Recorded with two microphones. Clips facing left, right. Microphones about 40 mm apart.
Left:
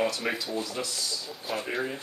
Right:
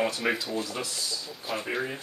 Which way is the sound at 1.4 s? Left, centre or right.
Centre.